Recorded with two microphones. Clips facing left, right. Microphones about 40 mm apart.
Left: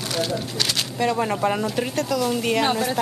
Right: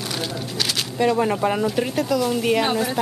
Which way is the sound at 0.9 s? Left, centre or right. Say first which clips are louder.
Right 4 dB; centre.